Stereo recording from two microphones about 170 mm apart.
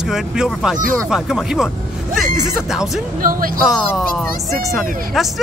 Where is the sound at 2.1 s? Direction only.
55° right (ahead or behind).